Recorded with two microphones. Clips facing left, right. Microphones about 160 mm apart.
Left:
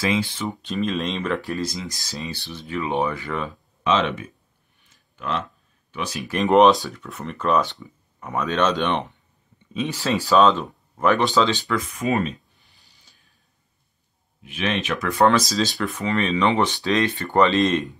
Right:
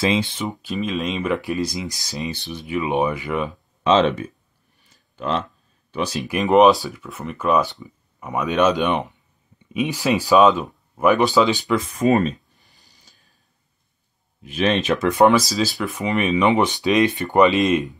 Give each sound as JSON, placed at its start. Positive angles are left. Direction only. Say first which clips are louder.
{"t": 0.0, "sound": "speech", "louder": "right 2 dB", "side_deg": -20}
{"t": 0.6, "sound": "speech", "louder": "left 1 dB", "side_deg": -5}
{"t": 3.8, "sound": "speech", "louder": "right 5 dB", "side_deg": -35}
{"t": 4.8, "sound": "a sound", "louder": "right 4 dB", "side_deg": -30}
{"t": 6.2, "sound": "speech", "louder": "right 1 dB", "side_deg": -5}
{"t": 12.0, "sound": "a sound", "louder": "right 7 dB", "side_deg": -40}
{"t": 14.4, "sound": "speech", "louder": "right 5 dB", "side_deg": -35}
{"t": 15.0, "sound": "speech", "louder": "right 3 dB", "side_deg": -15}
{"t": 15.3, "sound": "speech", "louder": "right 2 dB", "side_deg": -5}
{"t": 15.9, "sound": "speech", "louder": "right 2 dB", "side_deg": -15}